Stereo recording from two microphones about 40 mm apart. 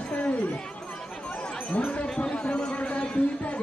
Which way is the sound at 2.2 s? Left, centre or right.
Left.